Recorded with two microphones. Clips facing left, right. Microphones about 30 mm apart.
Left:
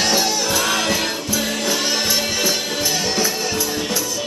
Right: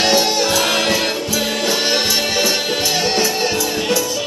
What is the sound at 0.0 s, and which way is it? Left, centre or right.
Music, right.